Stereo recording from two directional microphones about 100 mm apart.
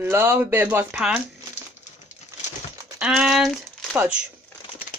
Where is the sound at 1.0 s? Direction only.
5° right (ahead or behind).